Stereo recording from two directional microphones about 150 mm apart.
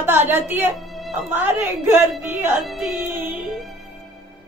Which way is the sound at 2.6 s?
Centre (ahead or behind).